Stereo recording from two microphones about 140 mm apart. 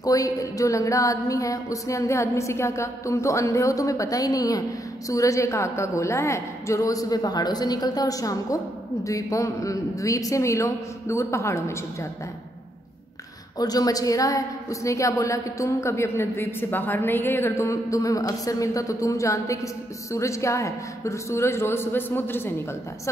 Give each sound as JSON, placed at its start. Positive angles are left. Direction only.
{"t": 0.0, "sound": "a woman's voice", "side_deg": 25}
{"t": 13.6, "sound": "a woman's voice", "side_deg": 25}